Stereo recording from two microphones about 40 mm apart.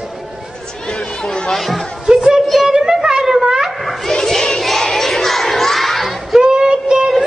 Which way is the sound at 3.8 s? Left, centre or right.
Centre.